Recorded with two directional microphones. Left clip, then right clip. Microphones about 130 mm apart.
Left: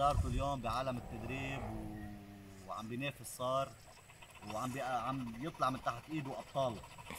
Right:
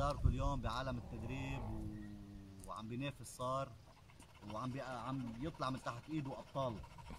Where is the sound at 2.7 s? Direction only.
15° right (ahead or behind).